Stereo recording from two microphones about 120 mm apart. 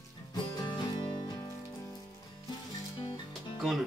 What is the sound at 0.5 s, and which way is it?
Music, 35° left (ahead or behind).